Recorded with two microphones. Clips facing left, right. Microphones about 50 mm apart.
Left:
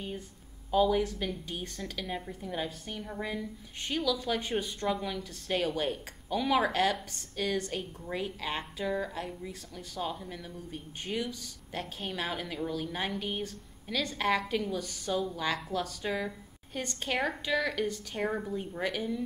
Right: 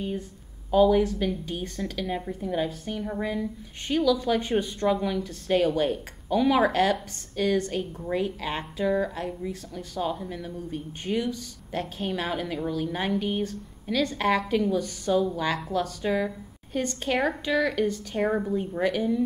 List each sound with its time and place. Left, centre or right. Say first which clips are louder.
0.7 s a woman's voice: right 6 dB; centre
18.2 s a woman's voice: right 7 dB; centre
18.6 s speech: right 8 dB; centre